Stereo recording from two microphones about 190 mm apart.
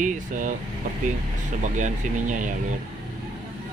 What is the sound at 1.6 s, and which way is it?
Speech, 40° right (ahead or behind).